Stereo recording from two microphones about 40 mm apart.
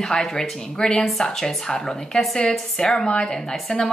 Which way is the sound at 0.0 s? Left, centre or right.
Centre.